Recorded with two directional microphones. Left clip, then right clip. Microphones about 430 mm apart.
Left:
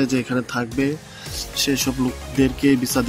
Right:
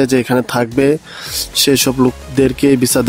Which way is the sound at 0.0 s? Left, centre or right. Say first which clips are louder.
Right 9 dB; right.